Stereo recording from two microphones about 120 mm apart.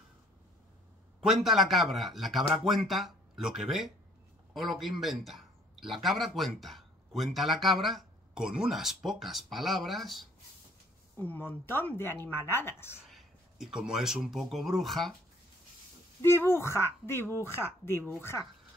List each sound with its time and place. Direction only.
1.2 s a man's voice: centre (ahead or behind)
11.1 s speech: 15° left (ahead or behind)
13.1 s speech: 5° right (ahead or behind)
16.2 s speech: 20° left (ahead or behind)